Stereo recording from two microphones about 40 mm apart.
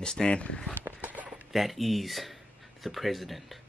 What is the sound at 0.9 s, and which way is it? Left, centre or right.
Run, right.